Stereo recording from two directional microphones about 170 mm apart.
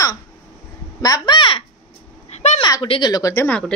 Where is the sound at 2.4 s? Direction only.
40° left (ahead or behind).